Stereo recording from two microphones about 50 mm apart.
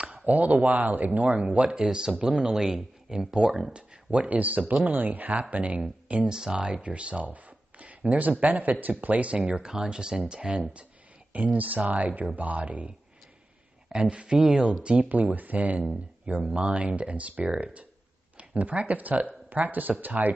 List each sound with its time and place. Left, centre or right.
0.0 s speech: right; by 3.7 s centre
3.7 s speech: right
6.2 s speech: centre
6.8 s speech: right
11.3 s speech: right
13.9 s speech: right
15.0 s speech: right